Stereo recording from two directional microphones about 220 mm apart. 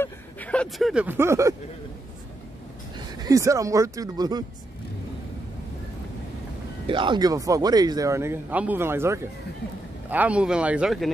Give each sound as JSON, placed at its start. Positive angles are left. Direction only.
{"t": 0.0, "sound": "speech", "side_deg": 5}
{"t": 3.2, "sound": "a man's voice", "side_deg": -15}
{"t": 6.9, "sound": "a man's voice", "side_deg": -20}